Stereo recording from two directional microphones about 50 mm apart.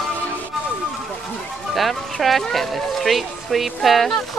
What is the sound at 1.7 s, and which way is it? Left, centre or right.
Speech, centre.